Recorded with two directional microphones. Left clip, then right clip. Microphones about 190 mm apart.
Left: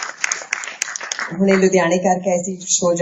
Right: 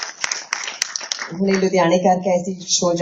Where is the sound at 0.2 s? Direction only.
35° right (ahead or behind).